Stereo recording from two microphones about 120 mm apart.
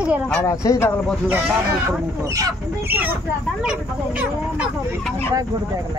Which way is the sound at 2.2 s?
30° right (ahead or behind).